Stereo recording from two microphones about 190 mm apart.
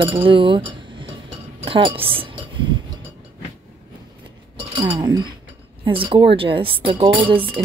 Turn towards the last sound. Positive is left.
turn(degrees=-25)  # may be behind; listen again after turning